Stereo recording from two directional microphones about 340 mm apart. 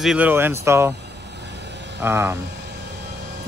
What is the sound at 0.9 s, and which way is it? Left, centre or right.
Vehicle, right.